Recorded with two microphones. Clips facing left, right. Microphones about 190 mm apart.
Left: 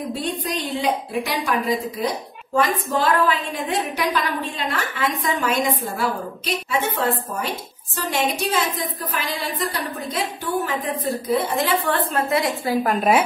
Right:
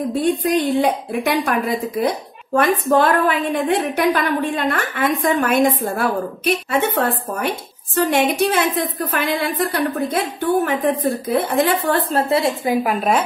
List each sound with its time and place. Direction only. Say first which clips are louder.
0.2 s a woman's voice: right 9 dB; 50° right (ahead or behind); by 12.5 s 30° right (ahead or behind)